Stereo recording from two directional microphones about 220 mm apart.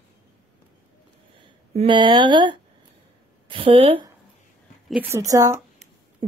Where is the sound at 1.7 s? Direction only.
20° right (ahead or behind).